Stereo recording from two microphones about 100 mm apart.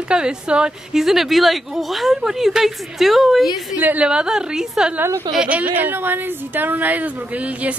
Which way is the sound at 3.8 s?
10° right (ahead or behind).